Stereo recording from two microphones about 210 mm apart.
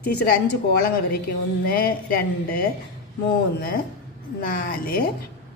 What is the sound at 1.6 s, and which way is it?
Speech, 45° left (ahead or behind).